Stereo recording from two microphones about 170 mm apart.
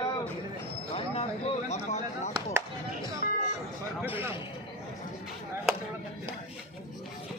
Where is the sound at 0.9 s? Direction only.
35° left (ahead or behind).